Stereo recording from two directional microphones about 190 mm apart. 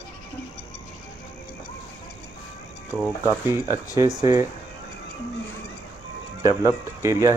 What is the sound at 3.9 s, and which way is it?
Speech, 15° right (ahead or behind).